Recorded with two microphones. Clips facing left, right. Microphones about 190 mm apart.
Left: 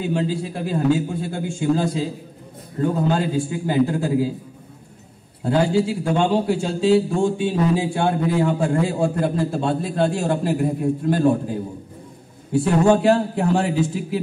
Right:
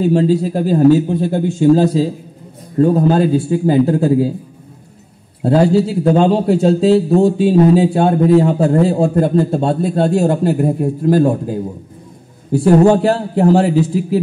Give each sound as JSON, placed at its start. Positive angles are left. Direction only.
{"t": 0.0, "sound": "a man's voice", "side_deg": -35}
{"t": 5.4, "sound": "a man's voice", "side_deg": -35}
{"t": 12.5, "sound": "a man's voice", "side_deg": -35}